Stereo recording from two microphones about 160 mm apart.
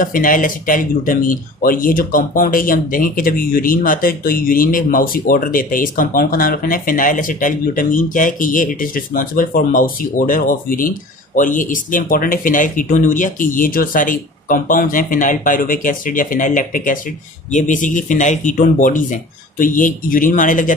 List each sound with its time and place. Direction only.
0.0 s speech: 55° left (ahead or behind)